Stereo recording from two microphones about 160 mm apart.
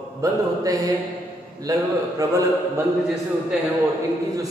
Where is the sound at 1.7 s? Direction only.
20° right (ahead or behind).